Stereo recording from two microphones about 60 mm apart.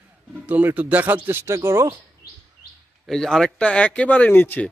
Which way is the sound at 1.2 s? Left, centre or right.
Right.